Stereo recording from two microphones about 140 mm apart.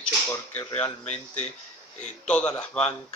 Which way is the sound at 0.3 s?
10° left (ahead or behind).